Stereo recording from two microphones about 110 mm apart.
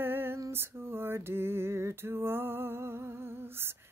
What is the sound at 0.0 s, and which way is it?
Lullaby, 20° right (ahead or behind).